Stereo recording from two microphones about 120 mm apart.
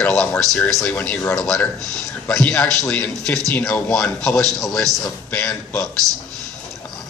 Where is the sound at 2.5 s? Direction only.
25° left (ahead or behind).